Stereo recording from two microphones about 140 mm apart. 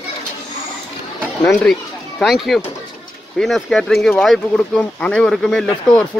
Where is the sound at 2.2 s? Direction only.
Centre (ahead or behind).